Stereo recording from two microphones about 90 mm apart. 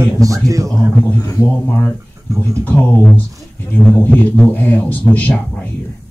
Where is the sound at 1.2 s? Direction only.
40° left (ahead or behind).